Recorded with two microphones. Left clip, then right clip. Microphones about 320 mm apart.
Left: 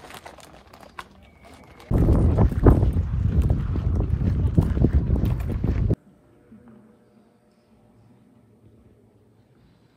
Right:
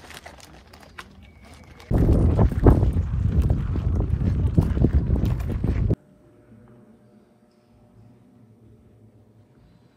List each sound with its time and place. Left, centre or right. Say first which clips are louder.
0.2 s bird: left 1 dB; centre
2.2 s boat: even; centre